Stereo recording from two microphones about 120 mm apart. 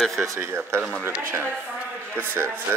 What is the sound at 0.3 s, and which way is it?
Speech, 20° right (ahead or behind).